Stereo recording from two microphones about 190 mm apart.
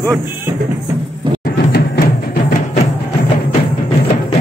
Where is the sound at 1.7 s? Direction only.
55° left (ahead or behind).